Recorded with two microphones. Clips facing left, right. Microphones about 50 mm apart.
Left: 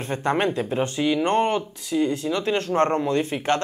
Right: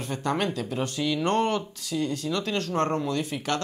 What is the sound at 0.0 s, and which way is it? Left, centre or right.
Speech, left.